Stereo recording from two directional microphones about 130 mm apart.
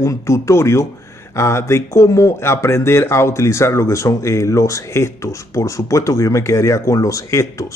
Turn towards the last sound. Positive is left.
turn(degrees=25)  # may be behind; listen again after turning